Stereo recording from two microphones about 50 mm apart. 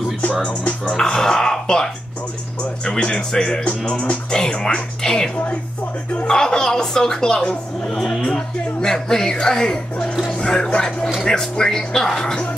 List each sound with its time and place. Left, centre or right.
0.2 s speech: left
0.8 s speech: centre
3.6 s music: left
4.6 s speech: centre